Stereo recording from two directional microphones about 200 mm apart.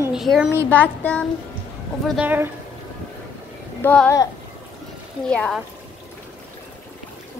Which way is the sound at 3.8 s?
10° left (ahead or behind).